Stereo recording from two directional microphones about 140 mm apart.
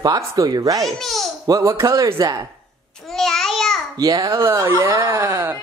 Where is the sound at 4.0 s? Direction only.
25° right (ahead or behind).